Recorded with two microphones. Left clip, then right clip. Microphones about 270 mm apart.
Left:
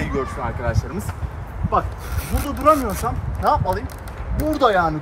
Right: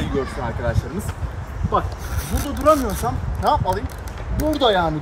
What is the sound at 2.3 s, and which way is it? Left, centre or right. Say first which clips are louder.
Speech: even; centre.